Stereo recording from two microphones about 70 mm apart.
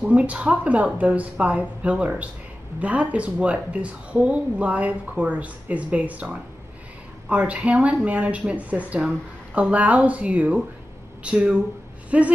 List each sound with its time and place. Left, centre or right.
0.1 s speech: right